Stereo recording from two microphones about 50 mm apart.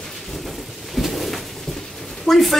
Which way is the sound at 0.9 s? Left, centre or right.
Centre.